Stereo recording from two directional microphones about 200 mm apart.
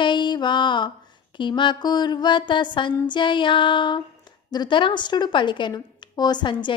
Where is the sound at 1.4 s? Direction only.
25° left (ahead or behind).